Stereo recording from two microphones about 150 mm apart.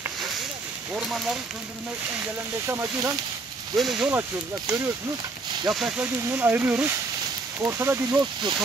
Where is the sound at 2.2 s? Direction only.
15° right (ahead or behind).